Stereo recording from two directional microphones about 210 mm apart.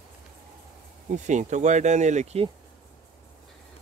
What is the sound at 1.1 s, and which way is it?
Speech, 35° right (ahead or behind).